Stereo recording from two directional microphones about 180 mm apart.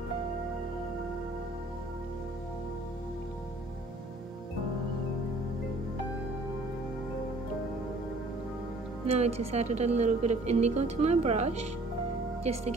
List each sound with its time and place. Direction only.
9.0 s a woman's voice: 35° right (ahead or behind)